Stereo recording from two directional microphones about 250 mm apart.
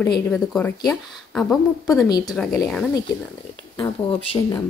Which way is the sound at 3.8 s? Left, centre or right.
Centre.